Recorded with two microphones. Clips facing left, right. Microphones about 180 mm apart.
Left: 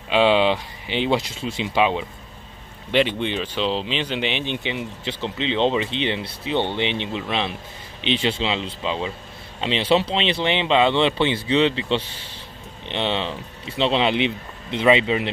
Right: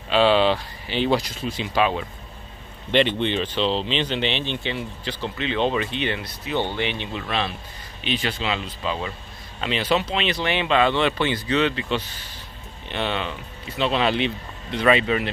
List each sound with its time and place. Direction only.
0.1 s speech: 15° left (ahead or behind)
2.9 s speech: 5° left (ahead or behind)